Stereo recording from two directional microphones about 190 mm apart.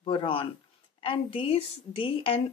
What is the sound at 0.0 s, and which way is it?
A woman's voice, 30° left (ahead or behind).